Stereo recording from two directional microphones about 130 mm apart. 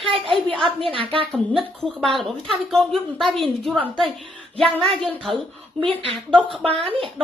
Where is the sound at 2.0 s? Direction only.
Centre (ahead or behind).